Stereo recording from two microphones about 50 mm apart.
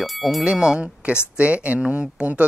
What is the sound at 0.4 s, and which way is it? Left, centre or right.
Speech, centre.